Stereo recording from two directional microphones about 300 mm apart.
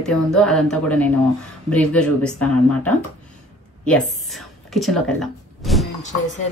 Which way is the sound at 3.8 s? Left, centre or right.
Centre.